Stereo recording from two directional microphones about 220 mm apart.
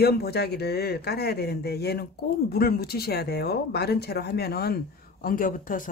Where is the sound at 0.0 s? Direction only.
45° left (ahead or behind).